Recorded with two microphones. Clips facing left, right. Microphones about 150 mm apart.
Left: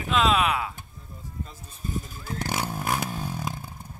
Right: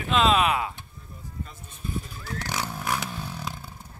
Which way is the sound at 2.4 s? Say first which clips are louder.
Left 3 dB; 50° left (ahead or behind).